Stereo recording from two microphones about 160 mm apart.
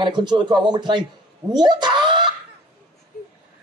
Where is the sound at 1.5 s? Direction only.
25° right (ahead or behind).